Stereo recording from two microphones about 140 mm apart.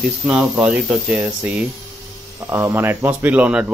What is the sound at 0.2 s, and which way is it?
Speech, 5° right (ahead or behind).